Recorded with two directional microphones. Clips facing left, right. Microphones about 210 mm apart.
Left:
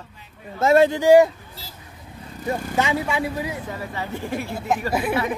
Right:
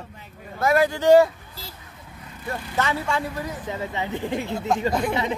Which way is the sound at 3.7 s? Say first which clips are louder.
Right 2 dB; 20° right (ahead or behind).